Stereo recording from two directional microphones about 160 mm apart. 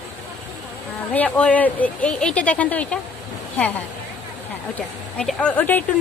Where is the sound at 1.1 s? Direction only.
10° left (ahead or behind).